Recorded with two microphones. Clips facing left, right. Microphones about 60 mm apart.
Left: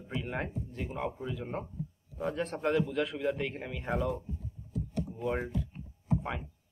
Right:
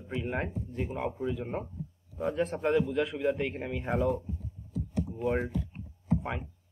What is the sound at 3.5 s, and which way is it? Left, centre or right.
Speech, centre.